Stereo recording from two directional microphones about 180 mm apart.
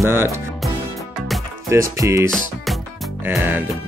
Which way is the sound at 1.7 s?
15° right (ahead or behind).